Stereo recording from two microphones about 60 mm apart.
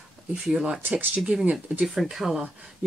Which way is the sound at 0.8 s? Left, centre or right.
Right.